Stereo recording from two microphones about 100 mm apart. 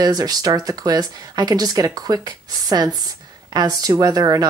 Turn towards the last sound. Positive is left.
turn(degrees=-40)  # may be behind; listen again after turning